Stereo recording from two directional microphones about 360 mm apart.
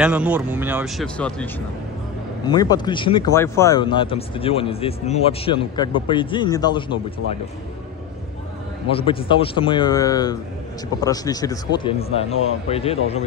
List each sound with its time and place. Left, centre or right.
0.0 s speech: centre
8.9 s speech: centre